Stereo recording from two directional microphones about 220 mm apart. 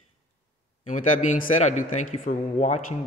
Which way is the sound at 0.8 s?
35° left (ahead or behind).